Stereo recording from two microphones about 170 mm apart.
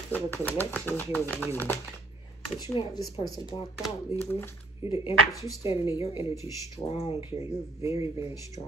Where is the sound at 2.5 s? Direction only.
25° left (ahead or behind).